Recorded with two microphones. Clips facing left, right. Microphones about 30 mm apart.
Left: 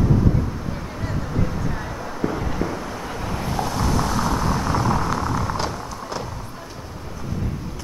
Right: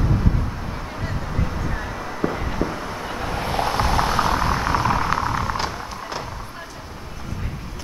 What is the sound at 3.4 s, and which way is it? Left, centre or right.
Vehicle, right.